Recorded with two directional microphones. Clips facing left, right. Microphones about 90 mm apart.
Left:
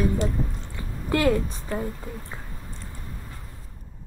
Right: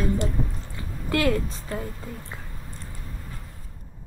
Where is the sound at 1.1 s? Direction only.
20° left (ahead or behind).